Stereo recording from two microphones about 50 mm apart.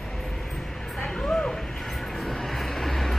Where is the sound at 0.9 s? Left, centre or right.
Centre.